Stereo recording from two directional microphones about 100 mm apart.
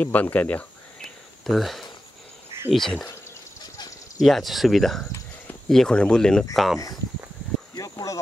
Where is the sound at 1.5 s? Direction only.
Centre (ahead or behind).